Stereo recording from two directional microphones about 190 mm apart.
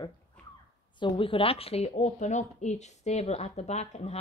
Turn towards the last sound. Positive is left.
turn(degrees=35)  # may be behind; listen again after turning